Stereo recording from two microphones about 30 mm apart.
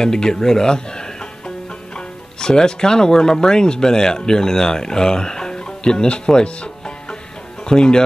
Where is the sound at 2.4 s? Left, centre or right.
Left.